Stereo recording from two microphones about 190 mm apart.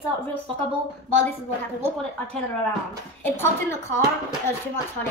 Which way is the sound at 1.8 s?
5° left (ahead or behind).